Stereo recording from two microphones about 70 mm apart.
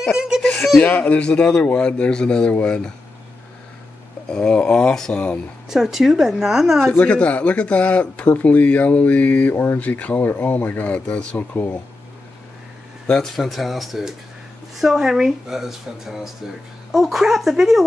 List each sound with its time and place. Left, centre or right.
0.8 s a man's voice: left
4.3 s a man's voice: centre
5.7 s speech: centre
6.9 s speech: centre
13.0 s speech: centre